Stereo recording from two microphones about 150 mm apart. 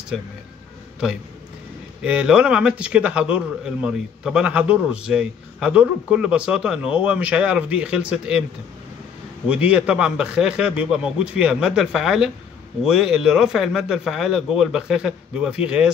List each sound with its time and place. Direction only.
2.0 s a man's voice: 5° right (ahead or behind)
9.5 s a man's voice: 10° right (ahead or behind)